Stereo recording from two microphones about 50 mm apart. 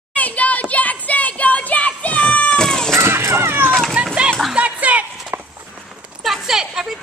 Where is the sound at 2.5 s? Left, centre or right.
Centre.